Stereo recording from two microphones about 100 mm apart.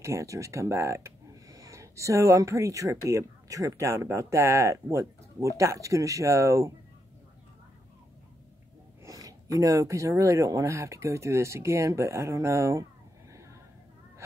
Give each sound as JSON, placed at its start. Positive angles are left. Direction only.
{"t": 0.0, "sound": "speech", "side_deg": -30}
{"t": 9.0, "sound": "speech", "side_deg": -35}
{"t": 13.3, "sound": "a sound", "side_deg": -30}